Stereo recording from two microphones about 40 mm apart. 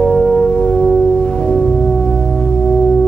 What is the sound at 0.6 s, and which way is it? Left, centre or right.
Music, centre.